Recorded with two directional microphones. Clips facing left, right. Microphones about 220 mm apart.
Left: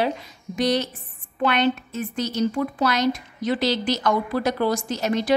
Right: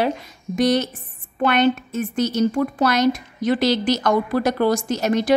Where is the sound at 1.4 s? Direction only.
50° right (ahead or behind).